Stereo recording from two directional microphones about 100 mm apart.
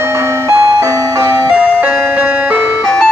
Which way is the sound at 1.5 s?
10° right (ahead or behind).